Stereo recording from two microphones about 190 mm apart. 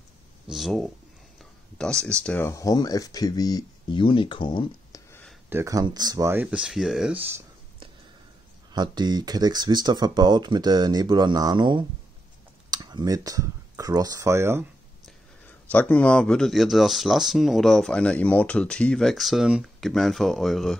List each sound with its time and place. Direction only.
0.5 s speech: centre (ahead or behind); by 5.0 s 25° left (ahead or behind)
5.5 s speech: 15° right (ahead or behind)
8.7 s speech: 20° right (ahead or behind)
15.7 s speech: 10° left (ahead or behind)